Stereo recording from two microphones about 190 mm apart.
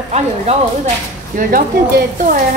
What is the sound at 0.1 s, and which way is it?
Speech, 35° right (ahead or behind).